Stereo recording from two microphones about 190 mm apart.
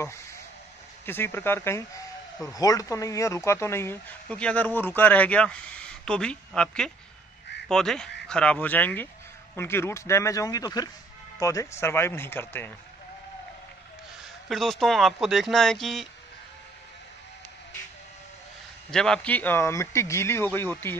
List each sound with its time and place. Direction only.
0.0 s speech: 15° left (ahead or behind)
14.5 s speech: centre (ahead or behind)
18.9 s speech: 5° left (ahead or behind)